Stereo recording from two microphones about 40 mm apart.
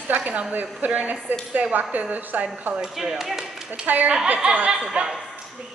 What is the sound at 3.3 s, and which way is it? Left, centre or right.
Speech, centre.